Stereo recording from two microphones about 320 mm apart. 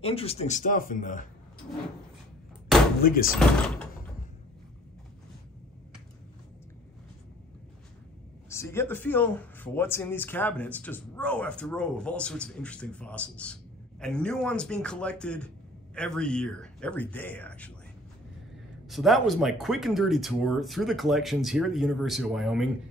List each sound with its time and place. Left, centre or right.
0.0 s speech: centre
3.0 s speech: left
3.3 s speech: centre
8.5 s speech: centre
18.9 s speech: centre